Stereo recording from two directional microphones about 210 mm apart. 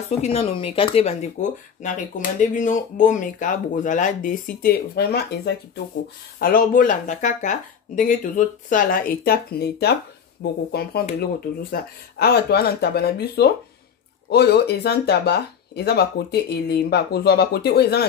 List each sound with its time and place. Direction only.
0.1 s speech: 30° left (ahead or behind); by 18.0 s 50° left (ahead or behind)